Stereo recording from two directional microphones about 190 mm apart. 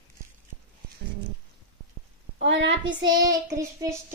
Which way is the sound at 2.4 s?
75° right (ahead or behind).